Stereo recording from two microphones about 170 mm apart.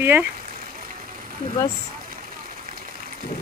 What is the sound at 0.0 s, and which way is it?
Speech, 10° right (ahead or behind).